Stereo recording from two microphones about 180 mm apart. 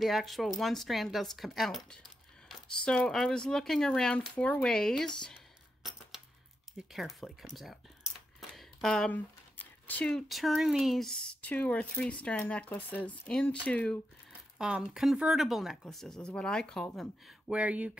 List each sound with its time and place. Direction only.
0.0 s speech: centre (ahead or behind)
6.9 s speech: centre (ahead or behind)